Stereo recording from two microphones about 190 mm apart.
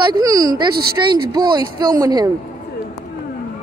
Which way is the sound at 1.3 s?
20° right (ahead or behind).